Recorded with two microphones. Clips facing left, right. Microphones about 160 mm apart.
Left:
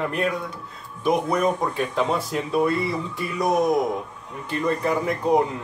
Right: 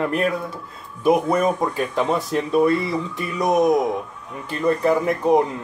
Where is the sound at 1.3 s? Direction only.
Centre (ahead or behind).